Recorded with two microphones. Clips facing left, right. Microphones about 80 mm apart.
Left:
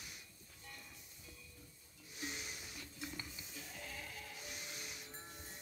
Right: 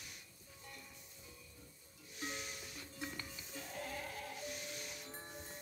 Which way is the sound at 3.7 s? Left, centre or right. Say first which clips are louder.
Right 6 dB; right.